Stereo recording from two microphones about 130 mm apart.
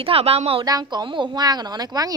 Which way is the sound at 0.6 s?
30° right (ahead or behind).